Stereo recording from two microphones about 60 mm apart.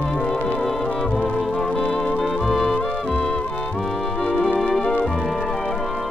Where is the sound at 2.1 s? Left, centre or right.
Centre.